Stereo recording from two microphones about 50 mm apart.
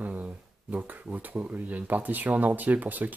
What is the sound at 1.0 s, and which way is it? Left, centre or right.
Speech, right.